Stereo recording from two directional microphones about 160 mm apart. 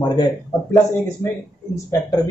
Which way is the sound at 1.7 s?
20° left (ahead or behind).